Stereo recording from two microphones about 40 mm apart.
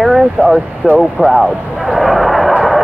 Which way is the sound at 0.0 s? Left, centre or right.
Centre.